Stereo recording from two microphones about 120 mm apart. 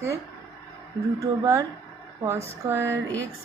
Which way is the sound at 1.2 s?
25° right (ahead or behind).